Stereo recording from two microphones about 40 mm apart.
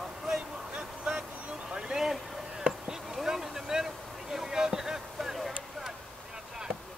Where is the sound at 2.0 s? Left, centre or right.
Centre.